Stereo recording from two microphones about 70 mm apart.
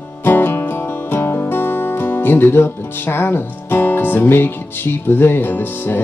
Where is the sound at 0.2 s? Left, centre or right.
Left.